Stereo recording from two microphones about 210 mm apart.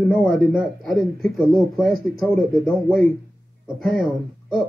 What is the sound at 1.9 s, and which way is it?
Speech, 45° right (ahead or behind).